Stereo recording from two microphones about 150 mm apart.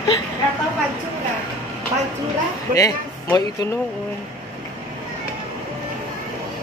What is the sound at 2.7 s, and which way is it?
Speech, 20° left (ahead or behind).